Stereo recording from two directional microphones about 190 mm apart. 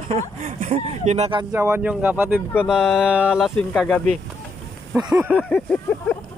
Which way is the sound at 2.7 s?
5° right (ahead or behind).